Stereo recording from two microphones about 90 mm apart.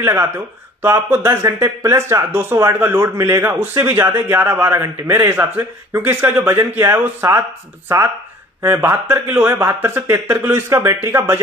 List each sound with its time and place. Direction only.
0.0 s a man's voice: 35° right (ahead or behind)
8.6 s a man's voice: 25° right (ahead or behind)